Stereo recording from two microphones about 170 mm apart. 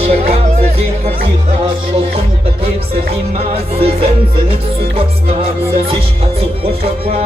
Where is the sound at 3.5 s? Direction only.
35° right (ahead or behind).